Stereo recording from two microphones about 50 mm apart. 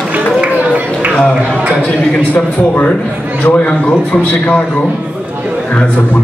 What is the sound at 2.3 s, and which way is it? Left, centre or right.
A man's voice, left.